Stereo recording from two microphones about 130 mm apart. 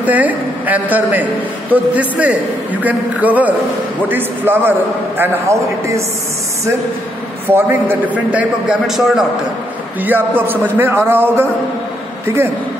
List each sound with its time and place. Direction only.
0.0 s a man's voice: 10° right (ahead or behind)
7.4 s a man's voice: 15° right (ahead or behind)
10.0 s a man's voice: 15° right (ahead or behind)